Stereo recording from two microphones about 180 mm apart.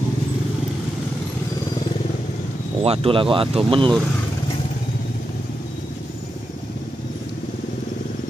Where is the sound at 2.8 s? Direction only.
35° right (ahead or behind).